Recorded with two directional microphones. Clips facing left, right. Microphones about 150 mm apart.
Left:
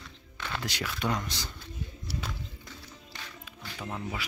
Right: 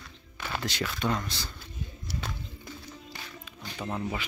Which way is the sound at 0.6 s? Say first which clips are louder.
Right 2 dB; 10° left (ahead or behind).